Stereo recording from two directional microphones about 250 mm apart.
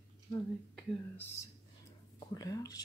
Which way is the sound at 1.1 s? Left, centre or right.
Centre.